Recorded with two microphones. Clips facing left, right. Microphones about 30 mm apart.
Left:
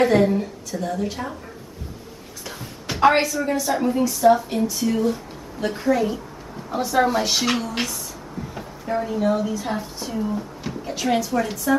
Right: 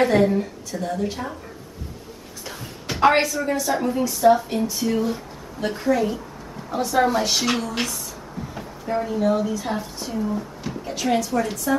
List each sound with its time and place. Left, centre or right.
0.0 s a woman's voice: centre
2.4 s a woman's voice: centre